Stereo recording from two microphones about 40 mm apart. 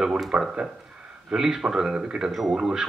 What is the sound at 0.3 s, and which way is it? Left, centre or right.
Speech, right.